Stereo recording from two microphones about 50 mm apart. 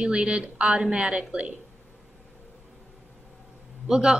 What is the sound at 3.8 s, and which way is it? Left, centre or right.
Speech, centre.